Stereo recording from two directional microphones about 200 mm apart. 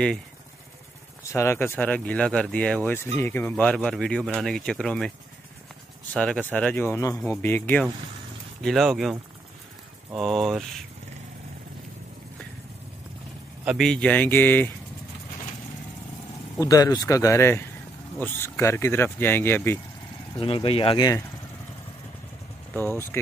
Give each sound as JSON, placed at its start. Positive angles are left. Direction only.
{"t": 1.2, "sound": "speech", "side_deg": 15}
{"t": 6.1, "sound": "speech", "side_deg": 5}
{"t": 10.1, "sound": "speech", "side_deg": 0}
{"t": 13.7, "sound": "speech", "side_deg": 0}
{"t": 16.5, "sound": "speech", "side_deg": 15}
{"t": 20.3, "sound": "speech", "side_deg": 25}
{"t": 22.8, "sound": "speech", "side_deg": 10}